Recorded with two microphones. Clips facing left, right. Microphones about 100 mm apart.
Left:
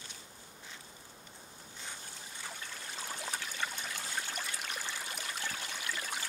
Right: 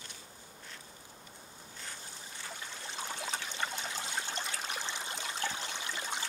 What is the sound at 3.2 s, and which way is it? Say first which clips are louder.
Trickle: right 1 dB; 20° right (ahead or behind).